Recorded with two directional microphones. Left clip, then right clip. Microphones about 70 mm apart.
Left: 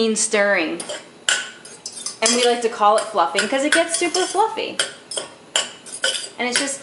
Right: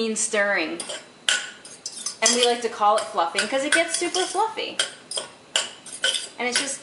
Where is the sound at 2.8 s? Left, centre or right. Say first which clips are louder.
Left 4 dB; centre.